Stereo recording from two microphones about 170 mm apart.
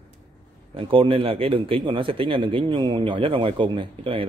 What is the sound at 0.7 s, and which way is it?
Speech, 30° right (ahead or behind).